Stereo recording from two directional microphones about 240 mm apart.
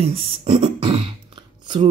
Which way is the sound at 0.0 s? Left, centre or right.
Right.